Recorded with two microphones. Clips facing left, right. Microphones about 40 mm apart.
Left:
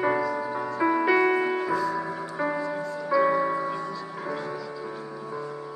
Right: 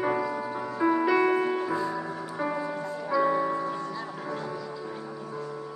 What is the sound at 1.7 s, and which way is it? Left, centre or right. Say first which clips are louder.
Music: left 3 dB; centre.